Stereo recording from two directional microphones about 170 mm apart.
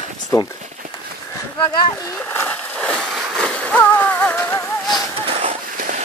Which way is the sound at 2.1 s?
10° left (ahead or behind).